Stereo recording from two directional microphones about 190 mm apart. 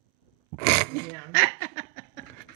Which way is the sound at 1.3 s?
50° left (ahead or behind).